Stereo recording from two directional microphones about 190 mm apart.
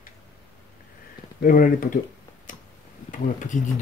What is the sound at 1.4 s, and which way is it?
Speech, 45° left (ahead or behind).